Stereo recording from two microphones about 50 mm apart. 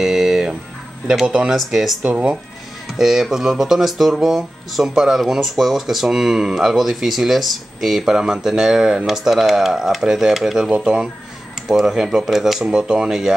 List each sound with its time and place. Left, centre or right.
0.0 s music: centre
1.2 s speech: centre
1.5 s speech: centre
2.0 s speech: right
3.0 s speech: centre
12.6 s speech: centre